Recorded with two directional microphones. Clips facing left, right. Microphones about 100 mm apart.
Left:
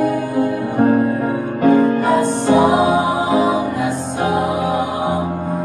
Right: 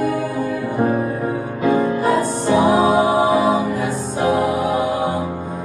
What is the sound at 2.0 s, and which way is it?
Music, 15° left (ahead or behind).